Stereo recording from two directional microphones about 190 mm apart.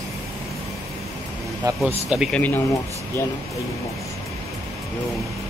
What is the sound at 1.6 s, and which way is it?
Speech, 15° right (ahead or behind).